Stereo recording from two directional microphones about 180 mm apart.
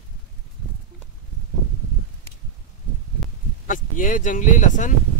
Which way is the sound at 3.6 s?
45° left (ahead or behind).